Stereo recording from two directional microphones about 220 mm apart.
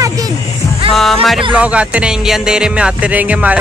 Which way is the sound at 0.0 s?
15° right (ahead or behind).